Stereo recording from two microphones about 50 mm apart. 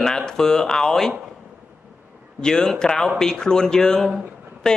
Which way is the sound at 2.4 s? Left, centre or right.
Centre.